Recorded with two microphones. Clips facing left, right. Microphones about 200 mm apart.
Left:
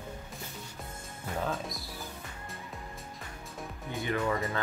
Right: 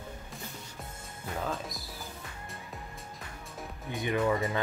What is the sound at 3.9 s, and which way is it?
Speech, 15° right (ahead or behind).